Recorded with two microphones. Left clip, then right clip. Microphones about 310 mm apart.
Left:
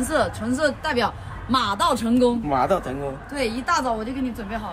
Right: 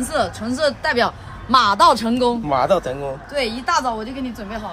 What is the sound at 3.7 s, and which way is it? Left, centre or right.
Speech, centre.